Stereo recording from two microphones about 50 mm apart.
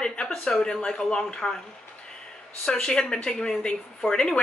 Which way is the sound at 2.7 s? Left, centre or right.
Centre.